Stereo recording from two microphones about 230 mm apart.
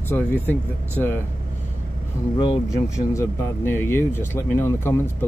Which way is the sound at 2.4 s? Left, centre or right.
Centre.